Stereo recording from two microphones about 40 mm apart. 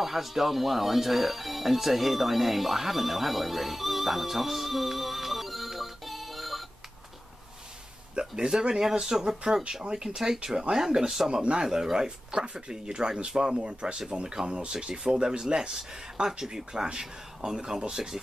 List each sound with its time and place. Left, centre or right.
0.0 s speech: centre
8.2 s speech: centre